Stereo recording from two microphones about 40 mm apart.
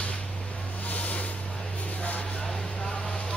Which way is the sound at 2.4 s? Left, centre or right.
Centre.